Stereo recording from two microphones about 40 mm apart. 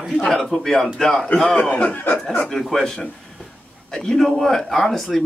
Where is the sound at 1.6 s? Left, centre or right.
Left.